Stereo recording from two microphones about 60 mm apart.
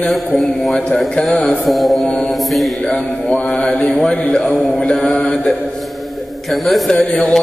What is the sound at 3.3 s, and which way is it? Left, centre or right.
Music, centre.